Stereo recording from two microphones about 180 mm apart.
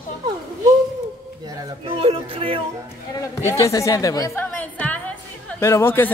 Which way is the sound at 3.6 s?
15° left (ahead or behind).